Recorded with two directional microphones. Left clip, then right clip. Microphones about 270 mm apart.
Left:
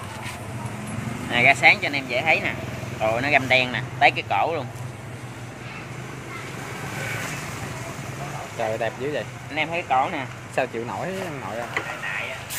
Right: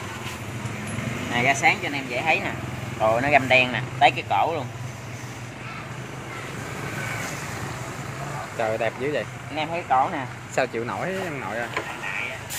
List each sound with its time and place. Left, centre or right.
1.3 s speech: centre
8.5 s speech: centre